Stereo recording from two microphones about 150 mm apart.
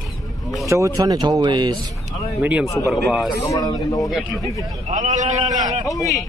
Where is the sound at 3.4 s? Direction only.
20° left (ahead or behind).